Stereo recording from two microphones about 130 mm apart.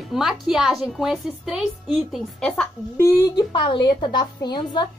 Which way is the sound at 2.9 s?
25° left (ahead or behind).